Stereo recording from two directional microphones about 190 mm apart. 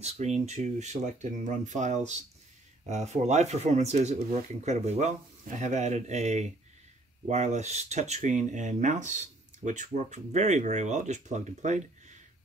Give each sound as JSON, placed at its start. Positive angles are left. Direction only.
{"t": 0.0, "sound": "speech", "side_deg": -35}